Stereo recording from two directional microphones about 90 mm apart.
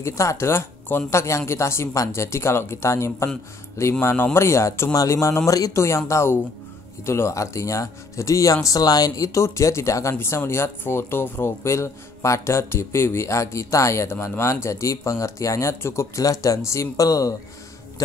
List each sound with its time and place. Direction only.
0.0 s speech: 35° left (ahead or behind)